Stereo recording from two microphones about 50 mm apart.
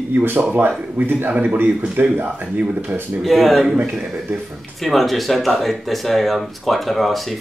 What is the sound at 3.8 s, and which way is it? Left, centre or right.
Speech, right.